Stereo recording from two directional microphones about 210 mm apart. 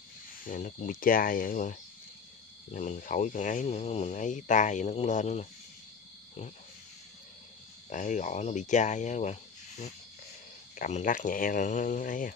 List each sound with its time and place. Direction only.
0.5 s speech: 40° left (ahead or behind)
7.9 s speech: 35° left (ahead or behind)